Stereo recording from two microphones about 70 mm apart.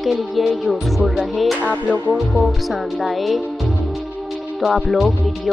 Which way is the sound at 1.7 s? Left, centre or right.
Right.